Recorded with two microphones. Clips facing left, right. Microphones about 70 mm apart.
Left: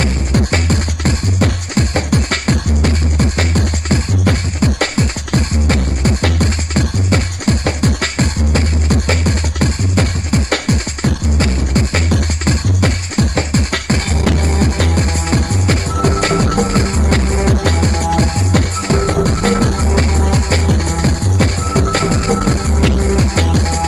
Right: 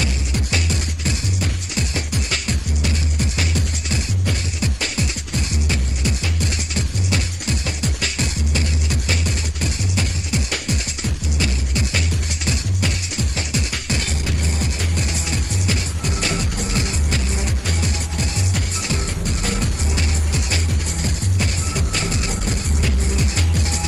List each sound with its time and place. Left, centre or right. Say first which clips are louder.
0.0 s music: left 9 dB; left
14.2 s music: left 10 dB; left
20.6 s music: left 10 dB; left